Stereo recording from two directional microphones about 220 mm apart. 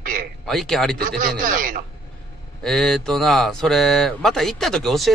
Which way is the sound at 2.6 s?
Centre (ahead or behind).